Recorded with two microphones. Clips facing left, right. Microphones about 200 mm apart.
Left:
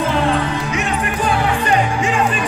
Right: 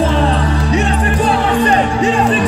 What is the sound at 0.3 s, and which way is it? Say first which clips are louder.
Music: right 3 dB; 35° right (ahead or behind).